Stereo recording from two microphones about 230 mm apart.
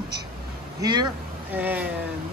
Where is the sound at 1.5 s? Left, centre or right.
Centre.